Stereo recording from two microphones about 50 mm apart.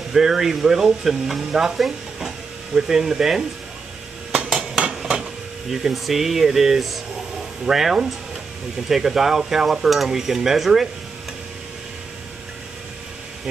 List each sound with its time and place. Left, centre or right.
0.1 s stir: centre
4.5 s hammer: centre
4.8 s hammer: centre
5.7 s stir: centre